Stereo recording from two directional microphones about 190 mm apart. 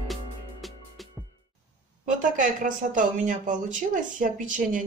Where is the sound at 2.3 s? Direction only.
45° right (ahead or behind).